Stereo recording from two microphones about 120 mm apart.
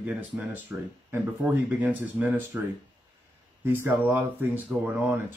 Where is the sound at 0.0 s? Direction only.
15° right (ahead or behind).